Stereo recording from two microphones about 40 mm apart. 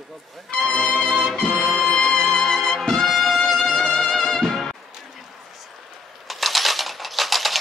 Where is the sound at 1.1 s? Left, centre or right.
Centre.